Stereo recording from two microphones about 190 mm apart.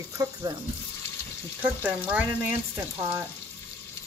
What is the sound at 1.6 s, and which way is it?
Speech, 5° right (ahead or behind).